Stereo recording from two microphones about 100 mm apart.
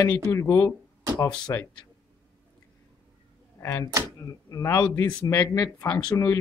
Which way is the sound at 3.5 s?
35° left (ahead or behind).